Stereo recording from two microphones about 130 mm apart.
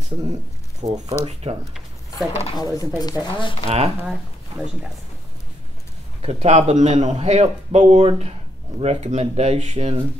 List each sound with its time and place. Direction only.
0.8 s speech: 30° right (ahead or behind)
1.2 s speech: 55° right (ahead or behind)
1.6 s a sound: centre (ahead or behind)
2.5 s speech: 30° left (ahead or behind)
3.6 s speech: 50° right (ahead or behind)
4.5 s speech: 25° right (ahead or behind)
6.2 s a man's voice: 55° right (ahead or behind)